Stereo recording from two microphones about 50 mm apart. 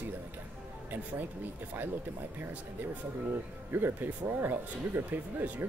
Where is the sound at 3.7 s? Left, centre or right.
Right.